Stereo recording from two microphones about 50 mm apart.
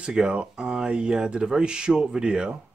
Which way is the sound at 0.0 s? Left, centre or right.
Centre.